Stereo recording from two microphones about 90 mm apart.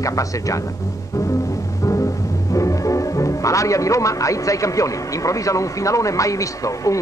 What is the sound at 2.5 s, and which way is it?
Speech, 35° left (ahead or behind).